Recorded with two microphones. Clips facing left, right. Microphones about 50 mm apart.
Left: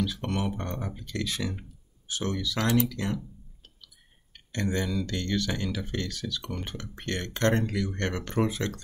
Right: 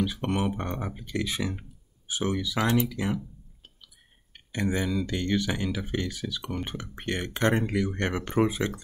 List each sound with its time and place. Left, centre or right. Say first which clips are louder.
0.0 s speech: right 2 dB; right